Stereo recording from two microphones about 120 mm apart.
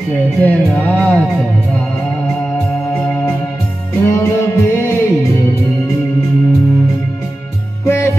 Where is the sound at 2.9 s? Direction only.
15° left (ahead or behind).